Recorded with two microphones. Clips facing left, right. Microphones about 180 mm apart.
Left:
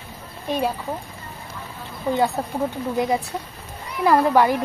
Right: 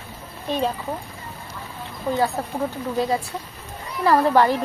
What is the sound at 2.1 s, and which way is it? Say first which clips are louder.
Speech: left 1 dB; 20° left (ahead or behind).